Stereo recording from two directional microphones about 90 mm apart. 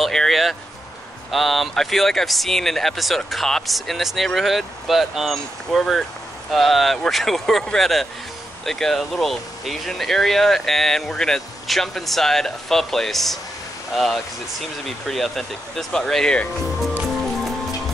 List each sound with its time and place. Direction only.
0.0 s speech: 5° left (ahead or behind)